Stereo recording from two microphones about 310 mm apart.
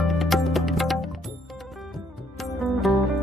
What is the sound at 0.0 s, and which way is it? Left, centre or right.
Music, centre.